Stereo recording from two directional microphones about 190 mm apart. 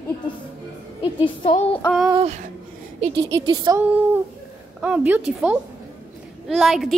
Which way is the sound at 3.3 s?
20° right (ahead or behind).